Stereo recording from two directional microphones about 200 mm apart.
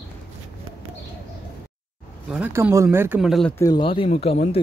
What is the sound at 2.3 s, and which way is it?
Speech, 10° right (ahead or behind).